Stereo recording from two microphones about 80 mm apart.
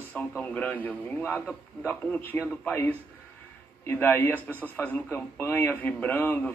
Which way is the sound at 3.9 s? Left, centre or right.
Left.